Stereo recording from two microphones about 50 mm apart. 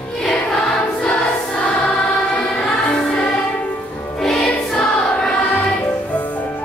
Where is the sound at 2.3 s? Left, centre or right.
Centre.